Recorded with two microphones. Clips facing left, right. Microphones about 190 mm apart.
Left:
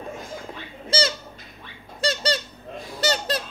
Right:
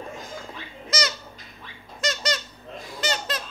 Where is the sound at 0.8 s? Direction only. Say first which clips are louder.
Left 4 dB; 30° left (ahead or behind).